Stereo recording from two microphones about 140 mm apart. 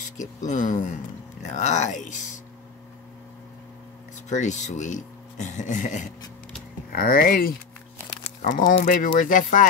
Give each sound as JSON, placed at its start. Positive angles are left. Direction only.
{"t": 0.0, "sound": "speech", "side_deg": 60}
{"t": 4.3, "sound": "speech", "side_deg": 60}
{"t": 6.9, "sound": "speech", "side_deg": 90}
{"t": 8.4, "sound": "speech", "side_deg": 75}
{"t": 8.8, "sound": "speech", "side_deg": 85}